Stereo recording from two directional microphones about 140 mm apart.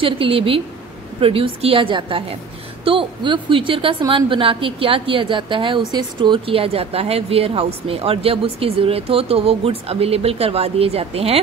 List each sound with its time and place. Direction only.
0.0 s a woman's voice: 40° right (ahead or behind)